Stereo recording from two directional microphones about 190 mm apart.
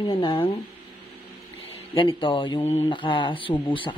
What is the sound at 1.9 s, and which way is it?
Speech, 25° left (ahead or behind).